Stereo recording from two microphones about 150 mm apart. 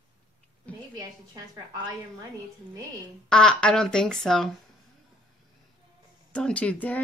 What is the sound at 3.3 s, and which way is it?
Speech, 5° left (ahead or behind).